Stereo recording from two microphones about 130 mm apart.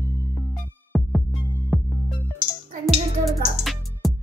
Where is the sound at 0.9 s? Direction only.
Centre (ahead or behind).